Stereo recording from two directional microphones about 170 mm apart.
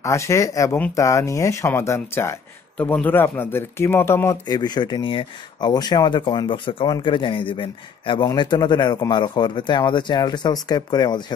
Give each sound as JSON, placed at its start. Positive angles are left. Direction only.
{"t": 0.0, "sound": "speech", "side_deg": 15}